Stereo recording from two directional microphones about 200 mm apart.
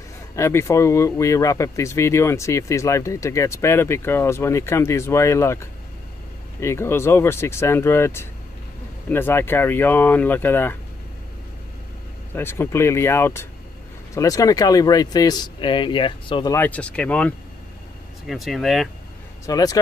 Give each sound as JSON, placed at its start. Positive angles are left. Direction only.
{"t": 0.4, "sound": "speech", "side_deg": 15}
{"t": 12.4, "sound": "speech", "side_deg": 10}
{"t": 16.5, "sound": "speech", "side_deg": 10}
{"t": 19.4, "sound": "speech", "side_deg": 20}